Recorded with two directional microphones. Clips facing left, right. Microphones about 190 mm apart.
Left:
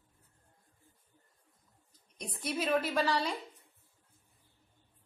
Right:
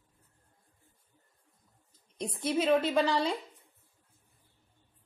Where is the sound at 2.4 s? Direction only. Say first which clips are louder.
Right 5 dB; 25° right (ahead or behind).